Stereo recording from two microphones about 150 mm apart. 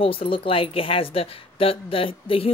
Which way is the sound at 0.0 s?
35° left (ahead or behind).